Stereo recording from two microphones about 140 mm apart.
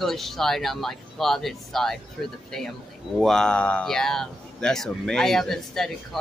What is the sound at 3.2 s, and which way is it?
Speech, 5° left (ahead or behind).